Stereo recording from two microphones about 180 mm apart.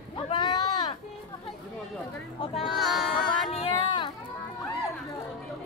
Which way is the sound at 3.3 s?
30° left (ahead or behind).